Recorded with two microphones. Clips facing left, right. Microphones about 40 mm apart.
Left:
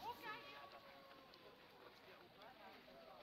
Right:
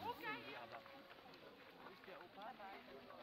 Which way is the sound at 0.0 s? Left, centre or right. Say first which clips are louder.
Right 4 dB; right.